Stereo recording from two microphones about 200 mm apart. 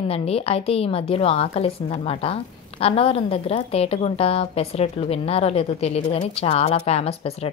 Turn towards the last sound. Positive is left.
turn(degrees=30)  # may be behind; listen again after turning